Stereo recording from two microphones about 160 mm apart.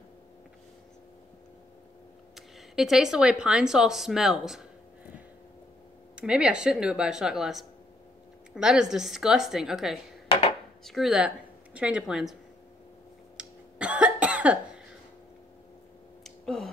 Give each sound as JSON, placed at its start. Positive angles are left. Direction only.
{"t": 2.3, "sound": "speech", "side_deg": 0}
{"t": 6.1, "sound": "speech", "side_deg": -5}
{"t": 13.4, "sound": "cough", "side_deg": -5}
{"t": 16.3, "sound": "a sound", "side_deg": 0}